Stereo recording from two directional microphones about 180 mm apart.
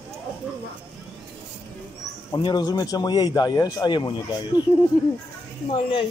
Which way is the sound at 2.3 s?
25° left (ahead or behind).